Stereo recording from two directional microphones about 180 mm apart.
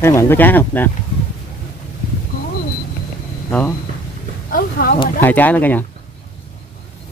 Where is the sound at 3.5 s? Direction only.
10° left (ahead or behind).